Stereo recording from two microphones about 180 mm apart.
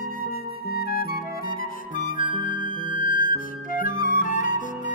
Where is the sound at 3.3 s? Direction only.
50° left (ahead or behind).